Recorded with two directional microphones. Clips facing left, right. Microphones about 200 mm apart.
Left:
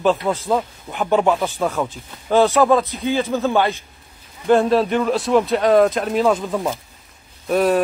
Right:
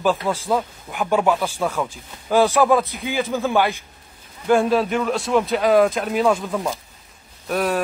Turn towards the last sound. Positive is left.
turn(degrees=0)  # may be behind; listen again after turning